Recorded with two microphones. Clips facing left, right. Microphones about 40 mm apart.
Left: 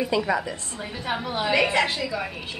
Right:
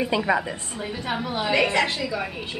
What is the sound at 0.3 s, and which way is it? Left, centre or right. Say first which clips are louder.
Speech: right 2 dB; right.